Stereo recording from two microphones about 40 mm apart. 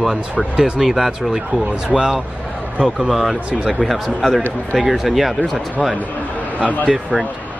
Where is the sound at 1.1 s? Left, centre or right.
Centre.